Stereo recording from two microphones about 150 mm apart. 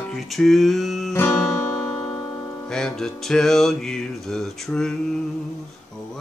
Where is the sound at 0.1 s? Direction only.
Centre (ahead or behind).